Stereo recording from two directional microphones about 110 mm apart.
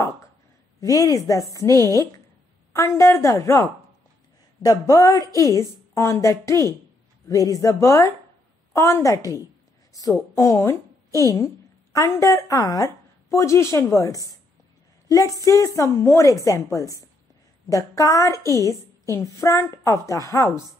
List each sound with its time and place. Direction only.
0.7 s a woman's voice: 35° left (ahead or behind)